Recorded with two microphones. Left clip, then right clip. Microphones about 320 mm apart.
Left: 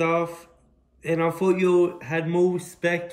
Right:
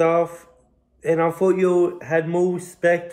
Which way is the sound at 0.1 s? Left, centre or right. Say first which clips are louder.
Right 4 dB; right.